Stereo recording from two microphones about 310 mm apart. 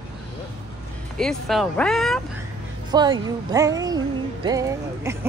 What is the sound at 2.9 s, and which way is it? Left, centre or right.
Speech, centre.